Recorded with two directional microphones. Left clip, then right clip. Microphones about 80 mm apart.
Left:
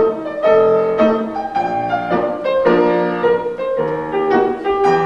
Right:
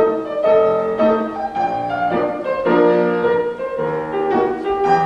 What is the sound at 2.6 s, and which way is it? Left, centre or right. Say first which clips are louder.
Music: even; left.